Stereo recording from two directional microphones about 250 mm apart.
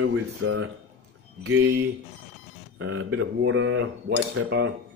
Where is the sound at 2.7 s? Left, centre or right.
Right.